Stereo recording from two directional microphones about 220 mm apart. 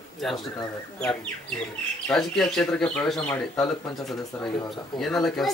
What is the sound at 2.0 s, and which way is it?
Speech, centre (ahead or behind).